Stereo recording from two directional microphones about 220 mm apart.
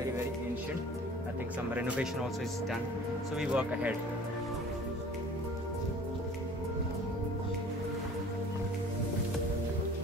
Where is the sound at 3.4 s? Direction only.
5° right (ahead or behind).